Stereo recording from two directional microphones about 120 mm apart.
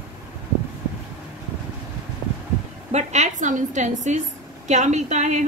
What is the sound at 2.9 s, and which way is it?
A woman's voice, 70° right (ahead or behind).